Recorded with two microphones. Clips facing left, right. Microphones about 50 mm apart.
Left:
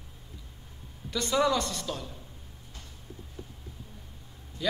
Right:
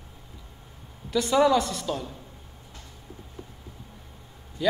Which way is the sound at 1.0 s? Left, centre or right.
Centre.